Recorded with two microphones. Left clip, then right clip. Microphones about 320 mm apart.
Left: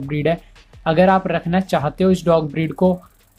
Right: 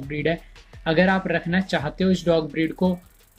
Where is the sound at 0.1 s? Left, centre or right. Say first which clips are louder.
Left 5 dB; left.